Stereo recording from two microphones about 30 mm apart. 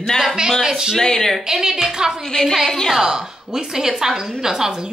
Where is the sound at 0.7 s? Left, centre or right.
Right.